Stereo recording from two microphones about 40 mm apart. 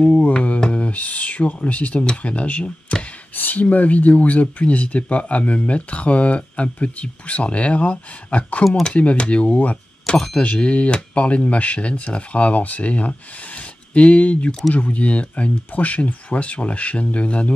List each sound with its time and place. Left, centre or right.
0.6 s speech: left
3.3 s a sound: left
3.6 s speech: left